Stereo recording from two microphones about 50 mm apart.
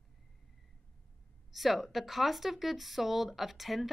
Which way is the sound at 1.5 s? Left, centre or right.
Centre.